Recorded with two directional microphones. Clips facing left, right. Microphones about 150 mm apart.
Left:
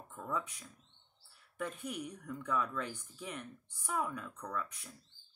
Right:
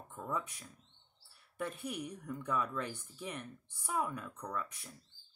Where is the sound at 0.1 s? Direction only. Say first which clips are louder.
Even; 15° right (ahead or behind).